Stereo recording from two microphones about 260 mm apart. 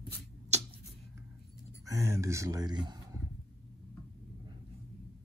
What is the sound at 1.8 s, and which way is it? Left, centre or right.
Speech, centre.